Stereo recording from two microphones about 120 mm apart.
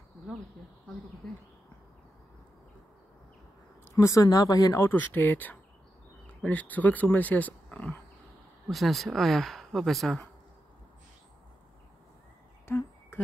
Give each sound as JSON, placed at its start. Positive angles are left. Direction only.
{"t": 3.9, "sound": "speech", "side_deg": 25}
{"t": 8.6, "sound": "speech", "side_deg": 0}
{"t": 12.6, "sound": "a sound", "side_deg": 20}